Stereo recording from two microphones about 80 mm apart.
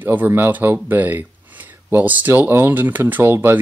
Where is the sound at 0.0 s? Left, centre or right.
Right.